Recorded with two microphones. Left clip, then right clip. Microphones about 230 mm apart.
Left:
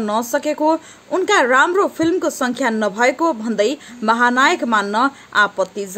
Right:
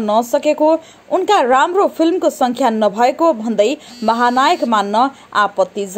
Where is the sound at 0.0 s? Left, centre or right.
Centre.